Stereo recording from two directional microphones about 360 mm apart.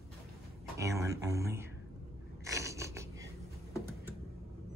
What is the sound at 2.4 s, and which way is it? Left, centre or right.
Mechanisms, centre.